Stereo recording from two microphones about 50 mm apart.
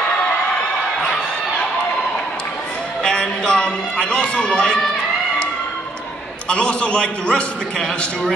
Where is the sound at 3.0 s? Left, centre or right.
Centre.